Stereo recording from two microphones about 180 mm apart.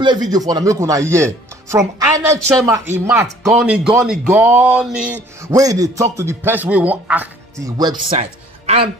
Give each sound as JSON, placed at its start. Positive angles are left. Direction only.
{"t": 0.0, "sound": "speech", "side_deg": -25}
{"t": 3.5, "sound": "speech", "side_deg": -5}
{"t": 7.6, "sound": "speech", "side_deg": -20}
{"t": 8.2, "sound": "music", "side_deg": -35}